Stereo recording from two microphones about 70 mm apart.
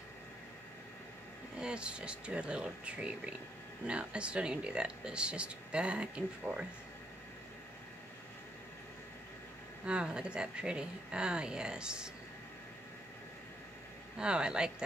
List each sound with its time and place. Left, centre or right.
1.6 s speech: centre
9.8 s speech: centre
14.1 s speech: centre